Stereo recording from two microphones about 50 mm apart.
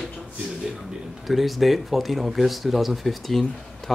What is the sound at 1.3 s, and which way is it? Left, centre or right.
Speech, centre.